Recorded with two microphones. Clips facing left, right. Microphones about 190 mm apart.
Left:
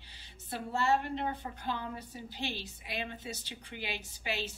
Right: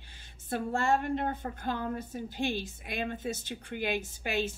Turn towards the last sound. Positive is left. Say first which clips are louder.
# right 6 dB
turn(degrees=-50)  # may be behind; listen again after turning